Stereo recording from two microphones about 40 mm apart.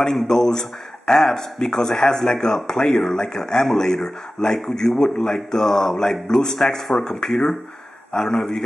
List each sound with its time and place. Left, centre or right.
0.0 s speech: centre